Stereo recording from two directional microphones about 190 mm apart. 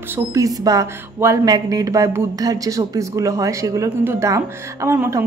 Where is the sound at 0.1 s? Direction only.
15° right (ahead or behind).